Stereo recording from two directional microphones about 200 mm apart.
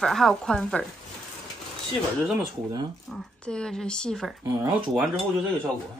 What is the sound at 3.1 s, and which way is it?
Speech, 5° left (ahead or behind).